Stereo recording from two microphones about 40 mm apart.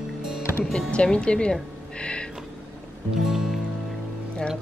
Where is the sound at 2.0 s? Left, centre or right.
Left.